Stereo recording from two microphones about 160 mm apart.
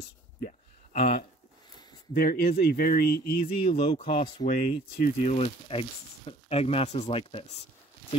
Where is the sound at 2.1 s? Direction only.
75° left (ahead or behind).